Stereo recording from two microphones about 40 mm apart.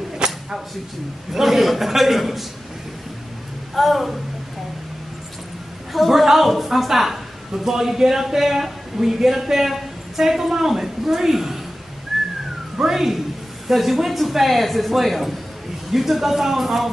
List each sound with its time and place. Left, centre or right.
0.2 s a sound: centre
1.3 s a man's voice: centre
3.7 s a man's voice: centre
5.9 s a woman's voice: centre
12.1 s whistling: centre
12.7 s a woman's voice: centre